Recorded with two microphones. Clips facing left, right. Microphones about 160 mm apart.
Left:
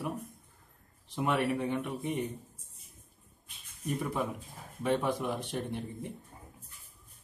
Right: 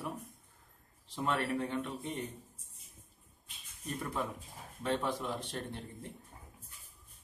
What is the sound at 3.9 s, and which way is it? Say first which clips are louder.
Speech: left 5 dB; 10° left (ahead or behind).